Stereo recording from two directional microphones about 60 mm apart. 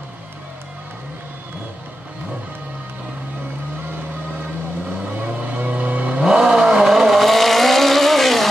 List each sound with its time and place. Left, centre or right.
5.2 s vehicle: right
6.2 s vehicle: centre